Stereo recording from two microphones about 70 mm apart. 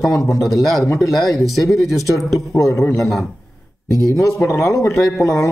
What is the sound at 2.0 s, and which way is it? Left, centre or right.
Speech, left.